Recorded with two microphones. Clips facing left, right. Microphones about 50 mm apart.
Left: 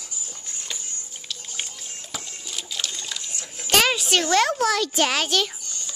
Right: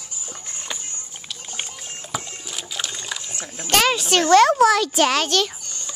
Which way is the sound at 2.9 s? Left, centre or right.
Right.